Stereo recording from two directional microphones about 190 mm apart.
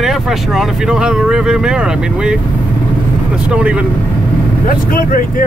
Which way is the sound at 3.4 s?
5° right (ahead or behind).